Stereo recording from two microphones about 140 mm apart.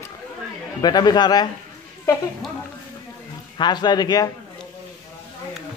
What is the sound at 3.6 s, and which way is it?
Speech, 30° left (ahead or behind).